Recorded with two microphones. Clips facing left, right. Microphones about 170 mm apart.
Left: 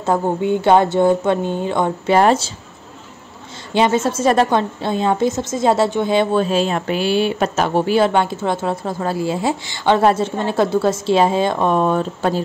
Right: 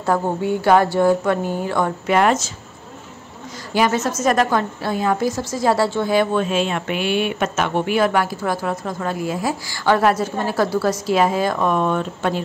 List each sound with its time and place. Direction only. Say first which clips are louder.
0.0 s a woman's voice: left 2 dB; 20° left (ahead or behind)
2.1 s speech: left 3 dB; 30° left (ahead or behind)
3.7 s a woman's voice: left 3 dB; 25° left (ahead or behind)